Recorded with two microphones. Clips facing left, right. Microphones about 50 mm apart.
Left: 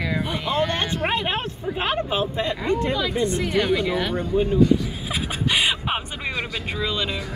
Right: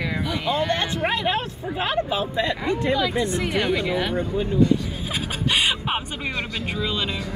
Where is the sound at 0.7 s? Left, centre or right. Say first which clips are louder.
Even; left.